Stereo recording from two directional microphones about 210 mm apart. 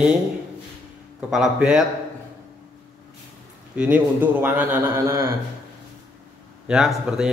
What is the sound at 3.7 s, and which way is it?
A man's voice, 5° right (ahead or behind).